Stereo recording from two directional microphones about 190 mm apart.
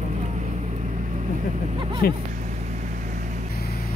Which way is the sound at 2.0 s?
55° left (ahead or behind).